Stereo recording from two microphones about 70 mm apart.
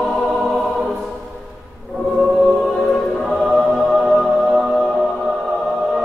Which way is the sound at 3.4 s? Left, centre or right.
Centre.